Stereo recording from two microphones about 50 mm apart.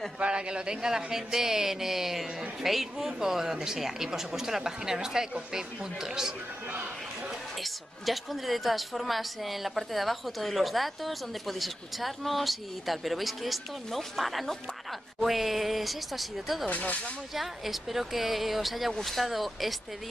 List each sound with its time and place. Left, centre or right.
0.2 s speech: centre
7.6 s a woman's voice: centre
16.6 s speech: left
17.3 s a woman's voice: centre